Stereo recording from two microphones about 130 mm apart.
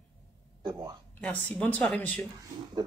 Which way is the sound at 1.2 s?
10° left (ahead or behind).